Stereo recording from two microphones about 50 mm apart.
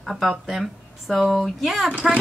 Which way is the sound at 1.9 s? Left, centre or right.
Right.